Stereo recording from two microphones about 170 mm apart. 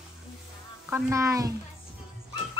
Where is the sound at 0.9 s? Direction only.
15° right (ahead or behind).